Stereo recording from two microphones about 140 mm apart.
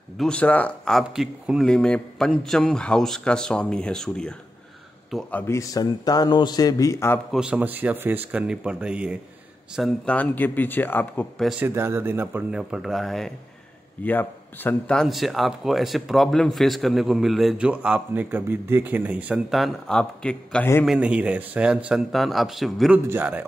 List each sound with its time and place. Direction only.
0.2 s speech: 10° left (ahead or behind)
5.3 s a man's voice: 20° left (ahead or behind)
7.3 s speech: 10° right (ahead or behind)
10.1 s speech: 15° left (ahead or behind)
11.6 s speech: 15° right (ahead or behind); by 13.3 s centre (ahead or behind)
14.0 s speech: 15° left (ahead or behind)
20.8 s speech: 5° right (ahead or behind)
23.0 s speech: 15° right (ahead or behind)